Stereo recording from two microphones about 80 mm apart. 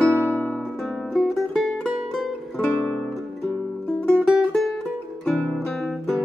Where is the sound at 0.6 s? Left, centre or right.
Centre.